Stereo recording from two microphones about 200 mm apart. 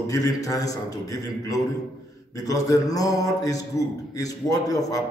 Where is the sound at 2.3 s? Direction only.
15° left (ahead or behind).